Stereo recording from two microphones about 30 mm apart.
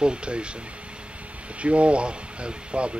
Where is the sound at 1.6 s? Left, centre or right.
Right.